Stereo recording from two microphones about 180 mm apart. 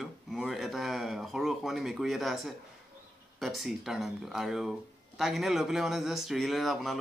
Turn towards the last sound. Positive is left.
turn(degrees=0)  # may be behind; listen again after turning